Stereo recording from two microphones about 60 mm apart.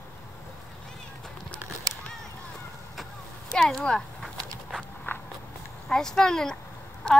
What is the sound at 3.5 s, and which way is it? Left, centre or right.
Speech, centre.